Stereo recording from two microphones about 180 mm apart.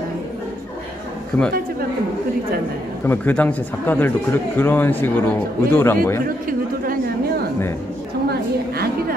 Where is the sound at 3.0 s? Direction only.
10° left (ahead or behind).